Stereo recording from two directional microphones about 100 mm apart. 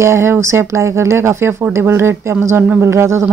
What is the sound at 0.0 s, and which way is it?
A woman's voice, 25° right (ahead or behind).